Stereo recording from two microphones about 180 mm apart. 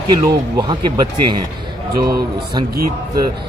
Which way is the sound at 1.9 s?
55° right (ahead or behind).